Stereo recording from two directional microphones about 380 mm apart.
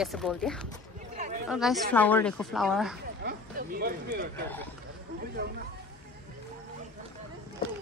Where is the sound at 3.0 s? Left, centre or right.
Right.